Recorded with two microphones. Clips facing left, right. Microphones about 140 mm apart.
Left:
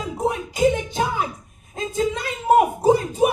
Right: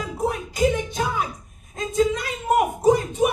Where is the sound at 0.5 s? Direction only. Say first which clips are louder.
Left 2 dB; 25° left (ahead or behind).